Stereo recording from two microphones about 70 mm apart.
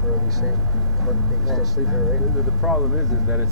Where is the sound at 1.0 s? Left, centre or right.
Centre.